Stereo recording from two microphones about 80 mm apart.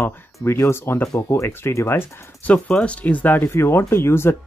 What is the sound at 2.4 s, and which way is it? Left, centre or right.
Speech, centre.